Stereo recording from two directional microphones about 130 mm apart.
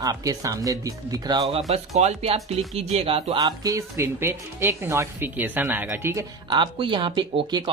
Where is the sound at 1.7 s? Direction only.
50° right (ahead or behind).